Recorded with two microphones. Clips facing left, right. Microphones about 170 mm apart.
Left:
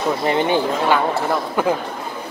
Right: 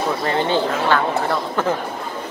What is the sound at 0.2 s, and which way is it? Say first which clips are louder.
Speech: left 2 dB; 15° left (ahead or behind).